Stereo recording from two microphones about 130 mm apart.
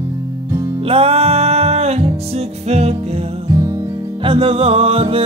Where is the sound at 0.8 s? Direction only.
45° right (ahead or behind).